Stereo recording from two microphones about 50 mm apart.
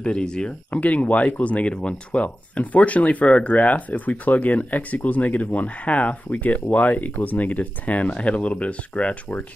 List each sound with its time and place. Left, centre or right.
0.0 s speech: centre
0.7 s speech: left